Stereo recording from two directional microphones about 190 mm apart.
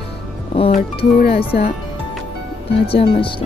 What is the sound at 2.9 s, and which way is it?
Speech, 30° left (ahead or behind).